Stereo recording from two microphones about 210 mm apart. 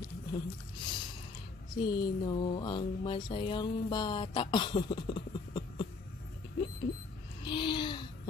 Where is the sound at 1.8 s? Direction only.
20° left (ahead or behind).